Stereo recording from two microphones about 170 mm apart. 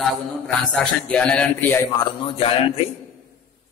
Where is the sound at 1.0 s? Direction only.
5° left (ahead or behind).